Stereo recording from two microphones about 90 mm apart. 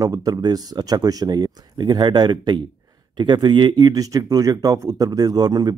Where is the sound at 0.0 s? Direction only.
45° right (ahead or behind).